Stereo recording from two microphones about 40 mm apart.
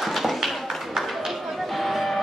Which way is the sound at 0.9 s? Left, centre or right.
Centre.